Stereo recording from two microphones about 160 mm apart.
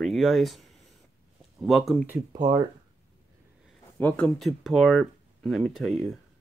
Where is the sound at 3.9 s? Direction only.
10° left (ahead or behind).